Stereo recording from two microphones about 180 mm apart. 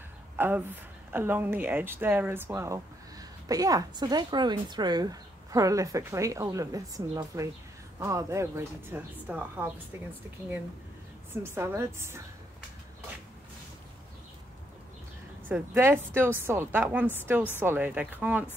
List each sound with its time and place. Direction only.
0.4 s speech: 10° right (ahead or behind)
11.3 s speech: 15° right (ahead or behind)
15.4 s speech: 10° right (ahead or behind)